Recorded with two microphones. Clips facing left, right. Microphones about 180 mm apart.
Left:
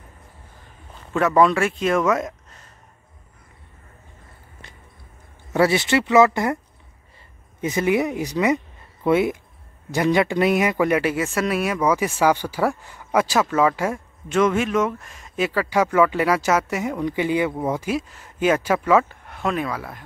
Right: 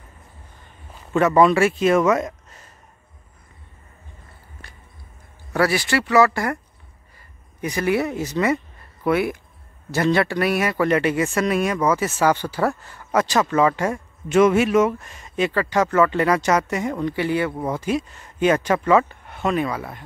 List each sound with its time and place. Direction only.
1.1 s speech: centre (ahead or behind)
5.5 s speech: 25° left (ahead or behind)
7.6 s speech: 20° left (ahead or behind); by 14.0 s 5° left (ahead or behind)
14.3 s speech: 10° right (ahead or behind)